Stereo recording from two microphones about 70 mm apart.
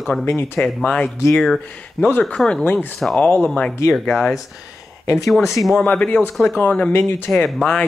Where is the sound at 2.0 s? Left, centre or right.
Left.